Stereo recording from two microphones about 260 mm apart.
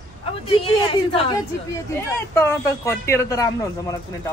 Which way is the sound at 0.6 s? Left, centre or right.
Left.